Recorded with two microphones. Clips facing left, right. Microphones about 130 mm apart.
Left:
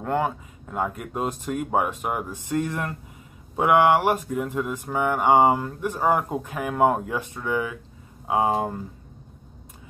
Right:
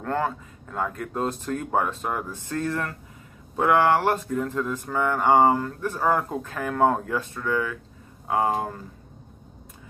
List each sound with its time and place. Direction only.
0.0 s speech: 15° left (ahead or behind)